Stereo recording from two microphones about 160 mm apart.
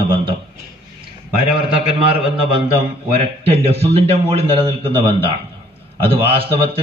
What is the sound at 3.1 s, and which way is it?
A man's voice, 40° right (ahead or behind).